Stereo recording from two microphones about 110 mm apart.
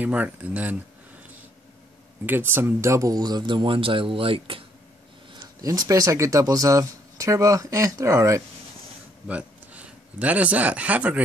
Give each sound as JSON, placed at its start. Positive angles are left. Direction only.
{"t": 0.0, "sound": "speech", "side_deg": -15}
{"t": 2.2, "sound": "speech", "side_deg": -20}
{"t": 5.6, "sound": "speech", "side_deg": -35}
{"t": 9.3, "sound": "speech", "side_deg": -10}